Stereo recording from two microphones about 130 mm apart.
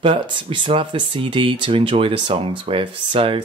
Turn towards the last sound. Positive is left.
turn(degrees=-40)  # may be behind; listen again after turning